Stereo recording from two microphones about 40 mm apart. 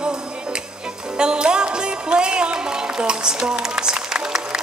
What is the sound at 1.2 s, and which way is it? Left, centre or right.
Music, right.